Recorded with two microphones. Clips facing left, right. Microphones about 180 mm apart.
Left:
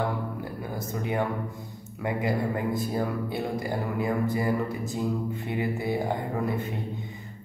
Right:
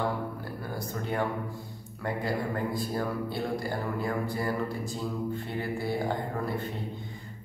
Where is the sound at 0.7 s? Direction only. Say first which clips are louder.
Left 2 dB; 10° left (ahead or behind).